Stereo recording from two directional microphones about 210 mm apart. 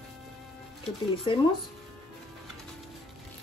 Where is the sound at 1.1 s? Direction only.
25° left (ahead or behind).